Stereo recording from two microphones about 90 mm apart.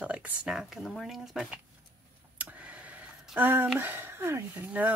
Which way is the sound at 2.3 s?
15° right (ahead or behind).